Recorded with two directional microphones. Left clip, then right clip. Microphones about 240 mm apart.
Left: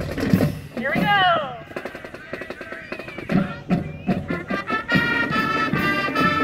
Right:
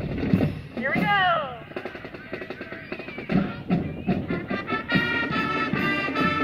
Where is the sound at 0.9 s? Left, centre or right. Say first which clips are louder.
Left 4 dB; left.